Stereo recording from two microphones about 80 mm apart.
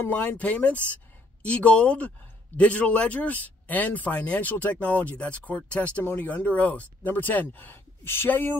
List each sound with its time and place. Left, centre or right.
0.0 s a man's voice: left